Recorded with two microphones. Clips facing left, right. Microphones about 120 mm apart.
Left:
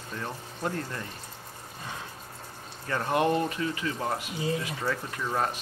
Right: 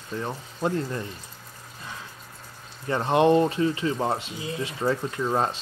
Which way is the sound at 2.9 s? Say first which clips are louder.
Right 6 dB; 20° right (ahead or behind).